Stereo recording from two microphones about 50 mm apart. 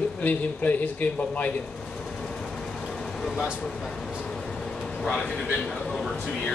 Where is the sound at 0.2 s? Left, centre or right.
Left.